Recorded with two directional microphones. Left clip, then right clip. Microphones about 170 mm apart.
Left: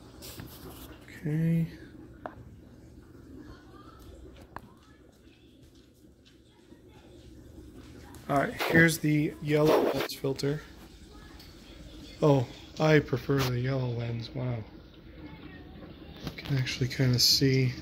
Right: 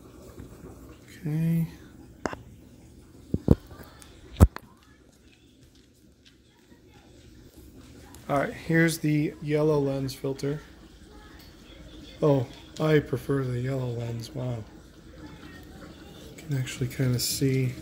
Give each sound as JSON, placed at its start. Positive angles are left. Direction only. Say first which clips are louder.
{"t": 1.1, "sound": "speech", "louder": "right 1 dB", "side_deg": -20}
{"t": 8.4, "sound": "speech", "louder": "left 2 dB", "side_deg": -10}
{"t": 12.2, "sound": "a man's voice", "louder": "right 1 dB", "side_deg": 0}
{"t": 16.3, "sound": "a man's voice", "louder": "left 1 dB", "side_deg": -5}